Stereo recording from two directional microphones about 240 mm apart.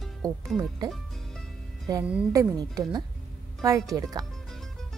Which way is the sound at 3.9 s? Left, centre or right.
Centre.